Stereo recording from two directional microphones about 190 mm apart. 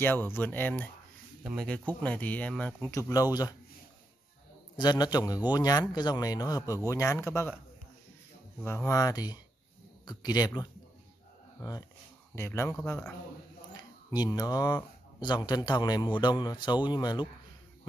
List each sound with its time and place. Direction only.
0.0 s speech: 10° left (ahead or behind)
1.4 s speech: 5° right (ahead or behind)
1.7 s speech: 5° left (ahead or behind)
4.7 s speech: 20° left (ahead or behind)
8.6 s speech: 15° left (ahead or behind)
12.4 s speech: 15° left (ahead or behind)
14.1 s speech: 20° left (ahead or behind)